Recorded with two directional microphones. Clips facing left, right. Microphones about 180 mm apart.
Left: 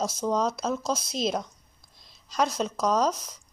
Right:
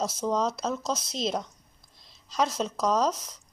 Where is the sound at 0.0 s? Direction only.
5° right (ahead or behind).